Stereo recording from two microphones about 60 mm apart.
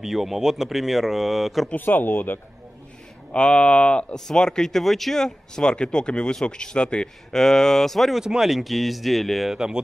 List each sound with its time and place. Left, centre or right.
0.0 s speech: centre
1.8 s speech: left
3.3 s speech: centre
8.2 s speech: centre